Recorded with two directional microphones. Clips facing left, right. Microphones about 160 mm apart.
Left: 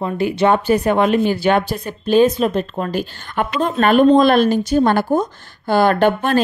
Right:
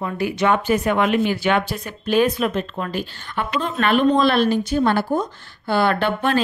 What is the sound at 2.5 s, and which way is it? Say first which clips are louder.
A woman's voice: left 4 dB; 35° left (ahead or behind).